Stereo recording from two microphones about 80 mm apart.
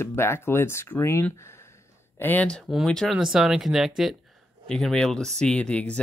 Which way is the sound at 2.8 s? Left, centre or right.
Centre.